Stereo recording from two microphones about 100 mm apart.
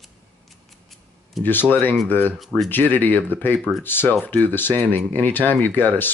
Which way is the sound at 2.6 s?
20° left (ahead or behind).